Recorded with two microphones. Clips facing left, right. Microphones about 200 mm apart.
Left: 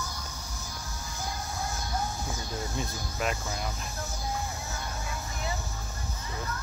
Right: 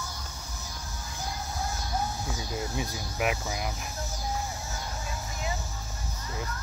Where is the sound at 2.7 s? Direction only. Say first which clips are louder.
Right 1 dB; 10° right (ahead or behind).